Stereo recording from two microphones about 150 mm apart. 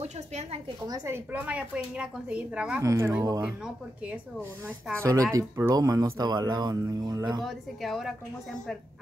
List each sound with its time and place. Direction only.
0.0 s a sound: 45° right (ahead or behind)
0.8 s a woman's voice: 20° right (ahead or behind)
2.8 s speech: 20° right (ahead or behind)
5.0 s speech: 20° right (ahead or behind)
7.4 s a woman's voice: centre (ahead or behind)